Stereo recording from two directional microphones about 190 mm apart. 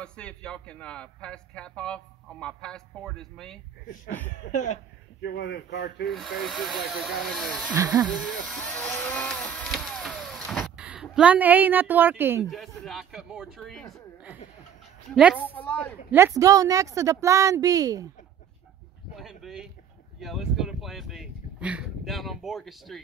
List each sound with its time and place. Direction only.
0.0 s speech: 5° left (ahead or behind)
4.5 s speech: 40° left (ahead or behind)
5.2 s speech: 65° left (ahead or behind)
6.0 s speech: centre (ahead or behind)
7.7 s a woman's voice: 15° right (ahead or behind)
8.0 s a woman's voice: 5° left (ahead or behind)
12.4 s speech: centre (ahead or behind)
15.5 s a man's voice: 10° left (ahead or behind)
16.1 s a woman's voice: 10° right (ahead or behind)
19.1 s speech: centre (ahead or behind)